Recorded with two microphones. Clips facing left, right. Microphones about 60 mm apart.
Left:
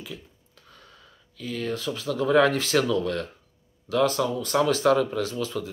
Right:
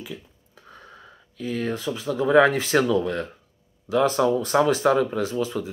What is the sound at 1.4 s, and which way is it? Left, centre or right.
Speech, right.